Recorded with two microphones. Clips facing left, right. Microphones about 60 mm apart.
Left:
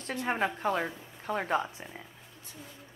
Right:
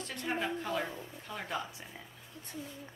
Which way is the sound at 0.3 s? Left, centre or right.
Left.